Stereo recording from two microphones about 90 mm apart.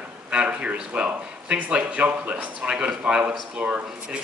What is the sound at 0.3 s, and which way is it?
Speech, 10° right (ahead or behind).